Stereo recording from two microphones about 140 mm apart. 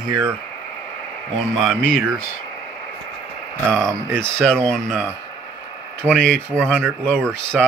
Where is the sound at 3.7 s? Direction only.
20° right (ahead or behind).